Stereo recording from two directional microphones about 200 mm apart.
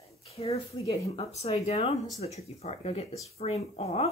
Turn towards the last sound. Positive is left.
turn(degrees=30)  # may be behind; listen again after turning